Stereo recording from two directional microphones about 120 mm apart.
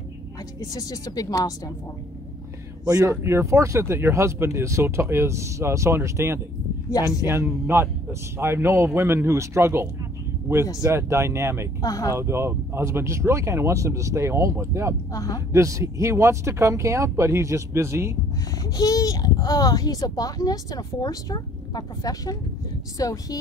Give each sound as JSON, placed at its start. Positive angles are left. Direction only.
{"t": 0.6, "sound": "a child's voice", "side_deg": 30}
{"t": 2.9, "sound": "speech", "side_deg": -25}
{"t": 11.8, "sound": "a child's voice", "side_deg": 30}
{"t": 12.2, "sound": "speech", "side_deg": -20}
{"t": 15.1, "sound": "a child's voice", "side_deg": 30}
{"t": 15.5, "sound": "speech", "side_deg": -25}
{"t": 18.8, "sound": "a child's voice", "side_deg": 30}